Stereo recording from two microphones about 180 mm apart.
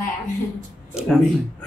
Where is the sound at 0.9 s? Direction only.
5° right (ahead or behind).